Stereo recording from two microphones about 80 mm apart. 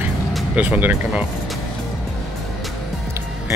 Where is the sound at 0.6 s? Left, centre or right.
Centre.